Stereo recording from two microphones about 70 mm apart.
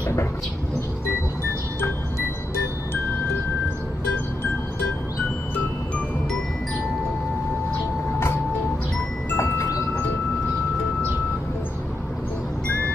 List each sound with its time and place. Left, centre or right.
9.4 s chime: left